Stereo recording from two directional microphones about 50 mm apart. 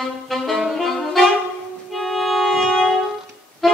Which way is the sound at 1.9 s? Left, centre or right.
Centre.